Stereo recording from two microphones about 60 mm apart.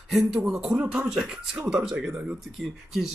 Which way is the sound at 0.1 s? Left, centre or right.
Centre.